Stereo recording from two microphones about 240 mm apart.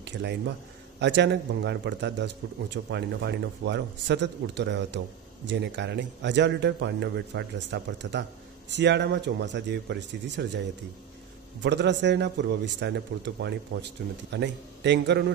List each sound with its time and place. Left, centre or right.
0.0 s a man's voice: right
11.6 s a man's voice: right